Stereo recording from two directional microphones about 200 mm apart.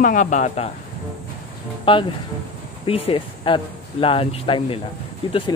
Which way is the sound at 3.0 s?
25° left (ahead or behind).